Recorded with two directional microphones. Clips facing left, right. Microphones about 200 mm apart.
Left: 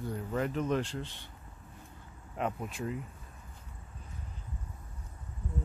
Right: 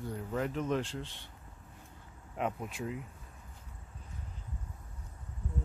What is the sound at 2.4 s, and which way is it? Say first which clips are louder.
Speech: left 1 dB; 5° right (ahead or behind).